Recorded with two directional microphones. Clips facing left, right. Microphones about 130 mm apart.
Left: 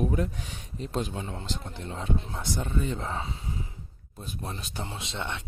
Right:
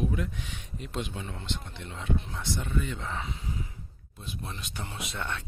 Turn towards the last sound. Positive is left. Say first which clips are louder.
# left 1 dB
turn(degrees=25)  # may be behind; listen again after turning